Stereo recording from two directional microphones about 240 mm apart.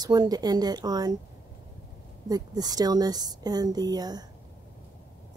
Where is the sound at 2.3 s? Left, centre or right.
Centre.